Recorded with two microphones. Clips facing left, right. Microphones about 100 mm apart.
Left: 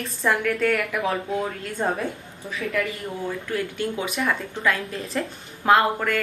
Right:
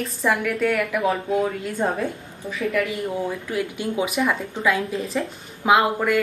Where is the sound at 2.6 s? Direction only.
20° right (ahead or behind).